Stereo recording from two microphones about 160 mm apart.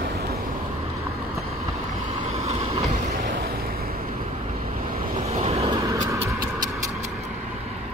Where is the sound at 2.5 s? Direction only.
40° right (ahead or behind).